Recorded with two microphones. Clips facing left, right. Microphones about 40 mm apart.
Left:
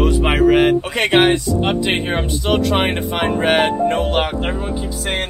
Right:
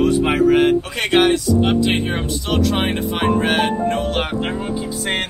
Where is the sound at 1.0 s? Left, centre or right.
Left.